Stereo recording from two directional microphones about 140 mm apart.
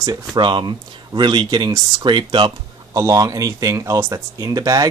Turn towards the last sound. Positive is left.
turn(degrees=-25)  # may be behind; listen again after turning